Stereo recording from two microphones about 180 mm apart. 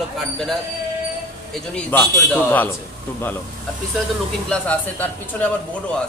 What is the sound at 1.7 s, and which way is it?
Speech, 10° left (ahead or behind).